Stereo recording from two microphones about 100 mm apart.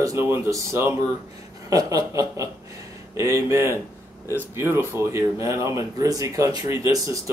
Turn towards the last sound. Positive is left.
turn(degrees=-35)  # may be behind; listen again after turning